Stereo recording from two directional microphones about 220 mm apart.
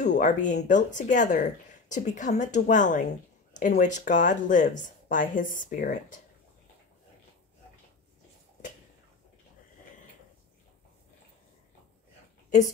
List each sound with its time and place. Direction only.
0.0 s speech: 35° left (ahead or behind)